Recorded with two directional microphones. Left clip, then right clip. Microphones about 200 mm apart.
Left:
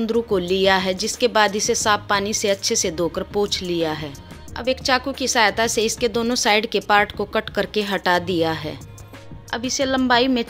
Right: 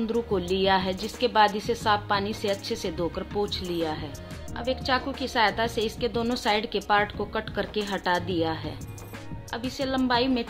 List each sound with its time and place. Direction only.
0.0 s a woman's voice: 20° left (ahead or behind)